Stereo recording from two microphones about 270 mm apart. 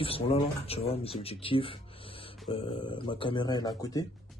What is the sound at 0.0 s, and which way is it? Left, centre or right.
Speech, left.